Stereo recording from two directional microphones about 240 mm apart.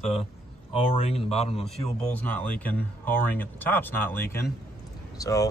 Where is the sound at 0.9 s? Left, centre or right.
Left.